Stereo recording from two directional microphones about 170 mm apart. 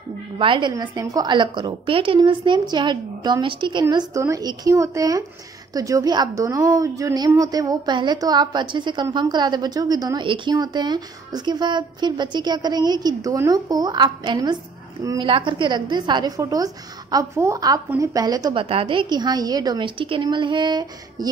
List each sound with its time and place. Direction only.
0.4 s a woman's voice: 30° right (ahead or behind)